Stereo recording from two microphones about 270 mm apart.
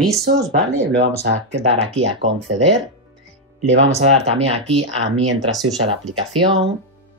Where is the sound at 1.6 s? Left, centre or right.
Right.